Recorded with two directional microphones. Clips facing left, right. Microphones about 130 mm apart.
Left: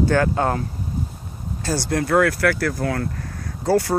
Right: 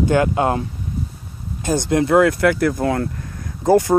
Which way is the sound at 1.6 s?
20° right (ahead or behind).